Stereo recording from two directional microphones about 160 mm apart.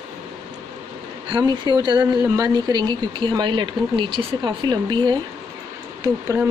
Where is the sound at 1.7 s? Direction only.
30° right (ahead or behind).